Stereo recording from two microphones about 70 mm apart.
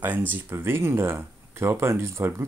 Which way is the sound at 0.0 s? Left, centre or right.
Right.